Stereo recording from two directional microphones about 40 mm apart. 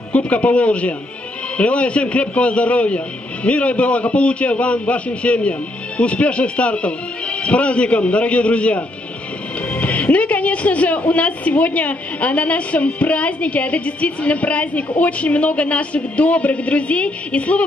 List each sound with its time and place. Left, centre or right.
0.1 s speech: left